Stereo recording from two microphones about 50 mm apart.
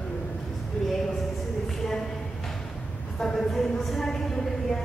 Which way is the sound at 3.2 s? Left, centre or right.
Centre.